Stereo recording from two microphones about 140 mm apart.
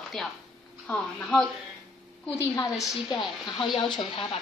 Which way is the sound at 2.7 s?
Centre (ahead or behind).